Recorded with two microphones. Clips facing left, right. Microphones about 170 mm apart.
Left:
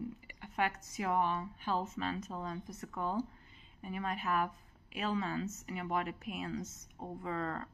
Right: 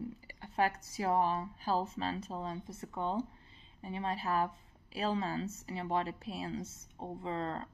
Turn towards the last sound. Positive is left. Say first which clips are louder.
# right 1 dB
turn(degrees=-25)  # may be behind; listen again after turning